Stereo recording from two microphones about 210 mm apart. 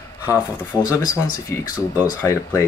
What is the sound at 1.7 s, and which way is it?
Speech, 10° right (ahead or behind).